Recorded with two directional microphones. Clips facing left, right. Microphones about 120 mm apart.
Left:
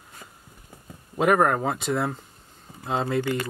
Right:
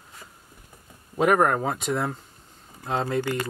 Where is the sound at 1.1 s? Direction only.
Centre (ahead or behind).